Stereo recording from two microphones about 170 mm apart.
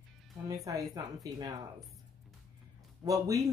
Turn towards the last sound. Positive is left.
turn(degrees=-20)  # may be behind; listen again after turning